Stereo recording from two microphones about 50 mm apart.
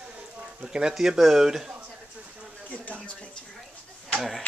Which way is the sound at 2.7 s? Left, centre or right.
Left.